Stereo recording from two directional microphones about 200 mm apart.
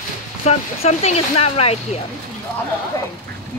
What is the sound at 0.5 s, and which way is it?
Speech, 35° left (ahead or behind).